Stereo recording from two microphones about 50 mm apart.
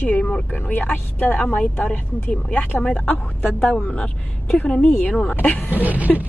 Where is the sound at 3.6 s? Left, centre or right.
Left.